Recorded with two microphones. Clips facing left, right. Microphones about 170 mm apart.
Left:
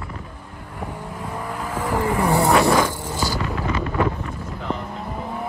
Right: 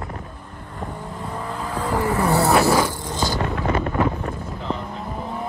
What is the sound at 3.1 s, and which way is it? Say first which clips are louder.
Vehicle: right 2 dB; 20° right (ahead or behind).